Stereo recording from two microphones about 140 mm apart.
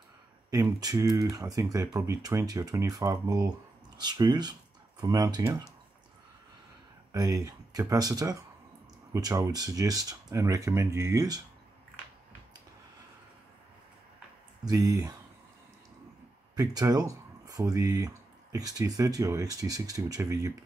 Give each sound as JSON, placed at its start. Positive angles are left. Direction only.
{"t": 0.5, "sound": "speech", "side_deg": -25}
{"t": 7.1, "sound": "speech", "side_deg": -25}
{"t": 14.6, "sound": "speech", "side_deg": -25}
{"t": 16.5, "sound": "speech", "side_deg": -25}